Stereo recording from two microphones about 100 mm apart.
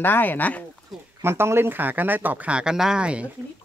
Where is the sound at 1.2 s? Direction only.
25° right (ahead or behind).